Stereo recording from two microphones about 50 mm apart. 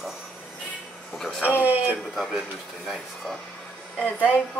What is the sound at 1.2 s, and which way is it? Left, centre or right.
Speech, centre.